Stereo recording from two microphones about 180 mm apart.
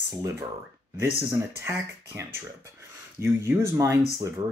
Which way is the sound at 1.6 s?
15° right (ahead or behind).